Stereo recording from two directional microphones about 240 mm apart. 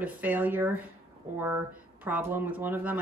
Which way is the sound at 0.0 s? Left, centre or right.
Centre.